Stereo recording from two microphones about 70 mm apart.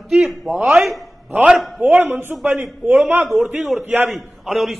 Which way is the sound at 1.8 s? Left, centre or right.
Right.